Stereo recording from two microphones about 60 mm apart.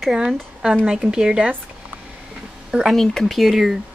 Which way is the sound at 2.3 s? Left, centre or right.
Centre.